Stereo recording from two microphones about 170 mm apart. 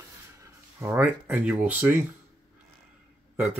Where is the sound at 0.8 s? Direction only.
10° right (ahead or behind).